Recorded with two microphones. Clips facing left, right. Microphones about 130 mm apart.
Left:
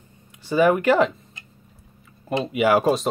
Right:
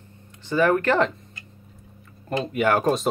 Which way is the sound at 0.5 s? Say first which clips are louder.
Left 2 dB; 10° left (ahead or behind).